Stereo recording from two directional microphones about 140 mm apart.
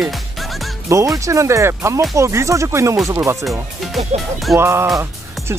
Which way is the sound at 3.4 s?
Centre (ahead or behind).